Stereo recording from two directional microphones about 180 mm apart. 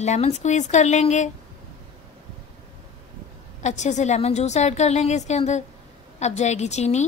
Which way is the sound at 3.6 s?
40° left (ahead or behind).